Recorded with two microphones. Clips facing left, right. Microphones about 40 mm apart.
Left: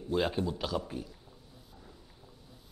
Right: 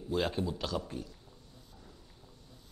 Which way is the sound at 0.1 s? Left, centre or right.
Centre.